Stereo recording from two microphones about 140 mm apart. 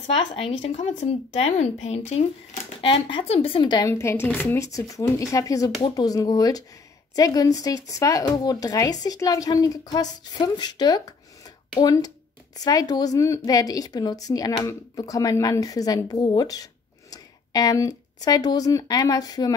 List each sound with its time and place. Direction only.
0.0 s speech: 45° left (ahead or behind)
4.0 s speech: 15° left (ahead or behind)